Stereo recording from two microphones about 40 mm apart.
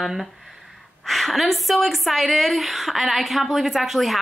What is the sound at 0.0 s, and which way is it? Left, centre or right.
A woman's voice, centre.